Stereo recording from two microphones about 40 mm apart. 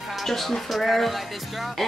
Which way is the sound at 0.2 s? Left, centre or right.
Centre.